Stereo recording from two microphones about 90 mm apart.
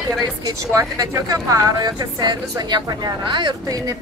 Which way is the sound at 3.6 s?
40° right (ahead or behind).